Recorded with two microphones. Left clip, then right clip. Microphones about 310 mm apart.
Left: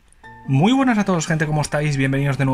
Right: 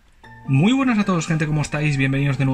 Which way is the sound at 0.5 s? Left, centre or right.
Centre.